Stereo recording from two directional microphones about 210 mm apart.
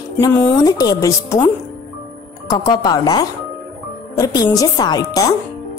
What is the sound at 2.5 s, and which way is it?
A woman's voice, 20° left (ahead or behind).